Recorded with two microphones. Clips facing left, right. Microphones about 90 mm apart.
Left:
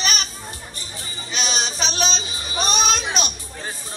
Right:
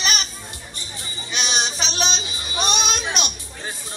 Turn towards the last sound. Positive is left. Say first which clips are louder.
# left 2 dB
turn(degrees=40)  # may be behind; listen again after turning